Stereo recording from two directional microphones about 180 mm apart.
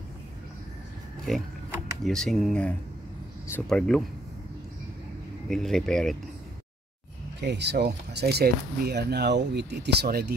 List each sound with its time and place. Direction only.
1.3 s speech: centre (ahead or behind)
5.5 s speech: centre (ahead or behind)
7.3 s speech: 70° right (ahead or behind)